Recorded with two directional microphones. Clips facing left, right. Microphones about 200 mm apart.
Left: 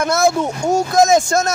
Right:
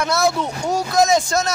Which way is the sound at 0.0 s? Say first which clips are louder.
Left 3 dB; 50° left (ahead or behind).